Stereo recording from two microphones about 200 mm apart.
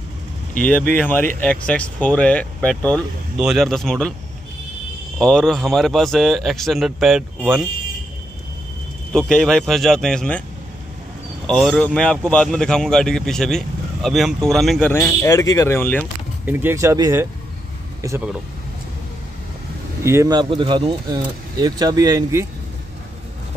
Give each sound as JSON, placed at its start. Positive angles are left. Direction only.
{"t": 0.6, "sound": "speech", "side_deg": 5}
{"t": 5.2, "sound": "speech", "side_deg": 5}
{"t": 9.1, "sound": "speech", "side_deg": 5}
{"t": 11.4, "sound": "speech", "side_deg": 0}
{"t": 16.4, "sound": "speech", "side_deg": -10}
{"t": 20.0, "sound": "speech", "side_deg": -15}